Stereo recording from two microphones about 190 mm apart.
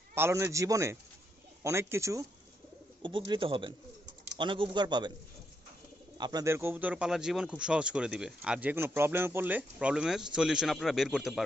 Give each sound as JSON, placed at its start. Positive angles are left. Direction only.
{"t": 0.1, "sound": "speech", "side_deg": -15}
{"t": 3.0, "sound": "speech", "side_deg": -25}
{"t": 6.1, "sound": "a man's voice", "side_deg": -20}